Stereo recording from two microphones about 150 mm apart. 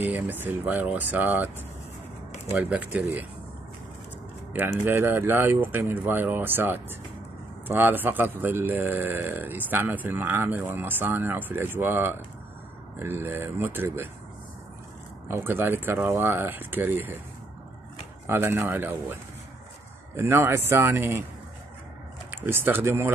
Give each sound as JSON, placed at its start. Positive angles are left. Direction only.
{"t": 0.0, "sound": "a man's voice", "side_deg": -15}
{"t": 2.5, "sound": "a man's voice", "side_deg": -10}
{"t": 4.8, "sound": "a man's voice", "side_deg": -15}
{"t": 15.2, "sound": "a man's voice", "side_deg": -15}
{"t": 18.2, "sound": "a man's voice", "side_deg": -15}
{"t": 20.2, "sound": "a man's voice", "side_deg": -15}
{"t": 22.3, "sound": "a man's voice", "side_deg": -15}